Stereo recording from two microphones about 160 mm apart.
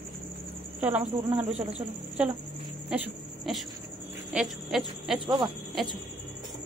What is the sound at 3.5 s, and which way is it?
Speech, 5° right (ahead or behind).